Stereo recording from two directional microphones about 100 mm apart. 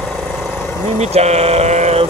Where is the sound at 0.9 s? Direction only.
90° right.